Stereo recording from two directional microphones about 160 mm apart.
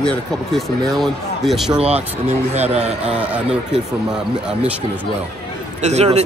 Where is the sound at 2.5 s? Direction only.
40° right (ahead or behind).